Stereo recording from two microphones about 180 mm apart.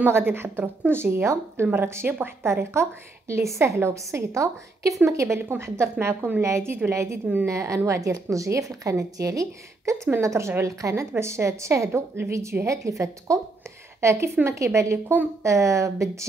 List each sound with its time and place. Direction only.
0.0 s a woman's voice: 10° right (ahead or behind)